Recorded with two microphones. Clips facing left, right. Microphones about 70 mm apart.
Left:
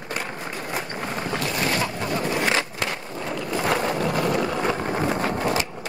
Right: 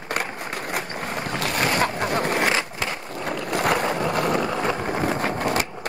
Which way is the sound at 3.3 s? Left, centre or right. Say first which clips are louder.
Right 2 dB; right.